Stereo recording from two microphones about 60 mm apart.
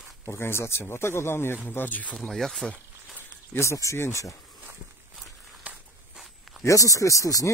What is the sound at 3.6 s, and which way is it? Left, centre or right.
Speech, left.